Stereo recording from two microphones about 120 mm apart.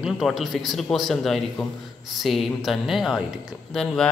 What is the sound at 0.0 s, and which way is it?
A man's voice, centre (ahead or behind).